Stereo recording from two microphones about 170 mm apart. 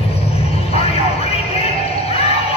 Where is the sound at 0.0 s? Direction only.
35° left (ahead or behind).